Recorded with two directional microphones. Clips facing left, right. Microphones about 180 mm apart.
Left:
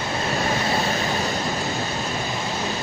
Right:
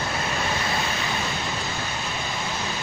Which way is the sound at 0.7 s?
40° left (ahead or behind).